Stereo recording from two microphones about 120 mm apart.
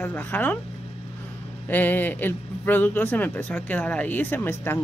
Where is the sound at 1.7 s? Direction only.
15° left (ahead or behind).